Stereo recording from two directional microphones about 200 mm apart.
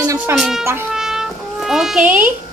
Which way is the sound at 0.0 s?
15° right (ahead or behind).